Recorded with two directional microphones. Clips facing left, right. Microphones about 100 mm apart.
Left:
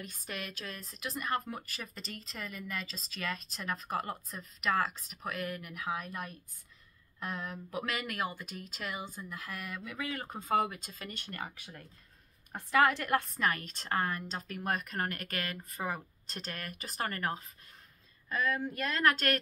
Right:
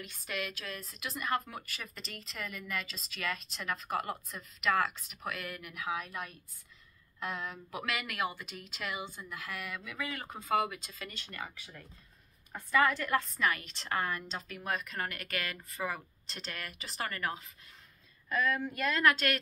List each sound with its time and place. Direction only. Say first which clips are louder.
0.0 s speech: right 3 dB; 40° left (ahead or behind)
7.3 s a woman's voice: left 1 dB; 40° left (ahead or behind)
12.5 s a woman's voice: left 1 dB; 65° left (ahead or behind); by 19.4 s 45° left (ahead or behind)